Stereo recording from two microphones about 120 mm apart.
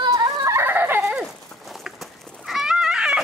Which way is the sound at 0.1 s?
25° right (ahead or behind).